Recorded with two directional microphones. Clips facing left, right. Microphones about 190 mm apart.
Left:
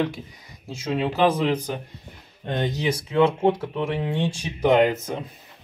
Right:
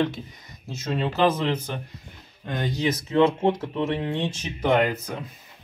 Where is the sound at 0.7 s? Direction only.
5° left (ahead or behind).